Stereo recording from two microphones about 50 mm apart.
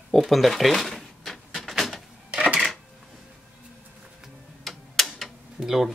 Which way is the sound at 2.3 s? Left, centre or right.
Centre.